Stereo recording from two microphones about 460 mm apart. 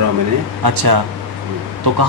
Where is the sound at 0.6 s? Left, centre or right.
Right.